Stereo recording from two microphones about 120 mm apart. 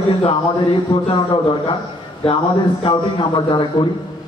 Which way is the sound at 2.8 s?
45° left (ahead or behind).